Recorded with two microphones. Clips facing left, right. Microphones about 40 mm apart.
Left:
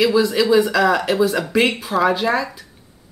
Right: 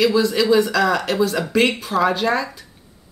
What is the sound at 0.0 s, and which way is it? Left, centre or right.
Speech, centre.